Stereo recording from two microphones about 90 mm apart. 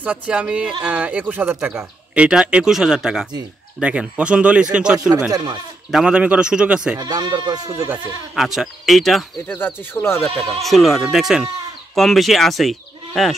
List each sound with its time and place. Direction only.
0.0 s speech: 15° right (ahead or behind)
2.1 s speech: 10° right (ahead or behind)
4.2 s speech: 15° right (ahead or behind)
5.3 s speech: 50° right (ahead or behind)
5.9 s speech: 10° right (ahead or behind)
7.0 s speech: 50° right (ahead or behind)
8.4 s speech: 5° right (ahead or behind)
9.5 s speech: 25° left (ahead or behind)
10.6 s speech: centre (ahead or behind)